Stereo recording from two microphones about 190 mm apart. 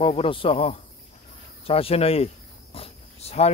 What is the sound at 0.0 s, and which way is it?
Speech, 30° left (ahead or behind).